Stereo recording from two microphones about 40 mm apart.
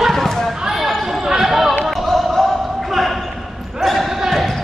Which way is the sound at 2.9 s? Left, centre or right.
Centre.